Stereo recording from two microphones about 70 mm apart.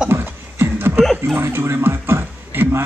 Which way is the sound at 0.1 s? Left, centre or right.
Right.